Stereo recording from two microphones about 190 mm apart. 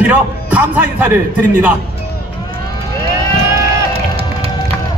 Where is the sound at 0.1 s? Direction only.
10° right (ahead or behind).